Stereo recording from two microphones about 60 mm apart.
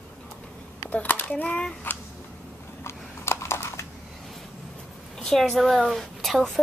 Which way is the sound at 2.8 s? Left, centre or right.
Left.